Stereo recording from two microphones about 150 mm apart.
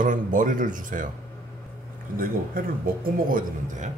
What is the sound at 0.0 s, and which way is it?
Speech, 60° right (ahead or behind).